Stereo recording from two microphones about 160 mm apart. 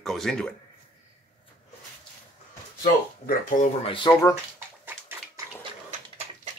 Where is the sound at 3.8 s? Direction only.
30° left (ahead or behind).